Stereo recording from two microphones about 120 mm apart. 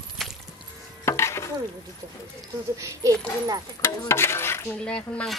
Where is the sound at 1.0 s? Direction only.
20° left (ahead or behind).